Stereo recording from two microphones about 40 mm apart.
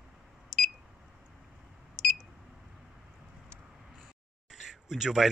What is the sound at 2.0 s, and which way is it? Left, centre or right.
Beep, centre.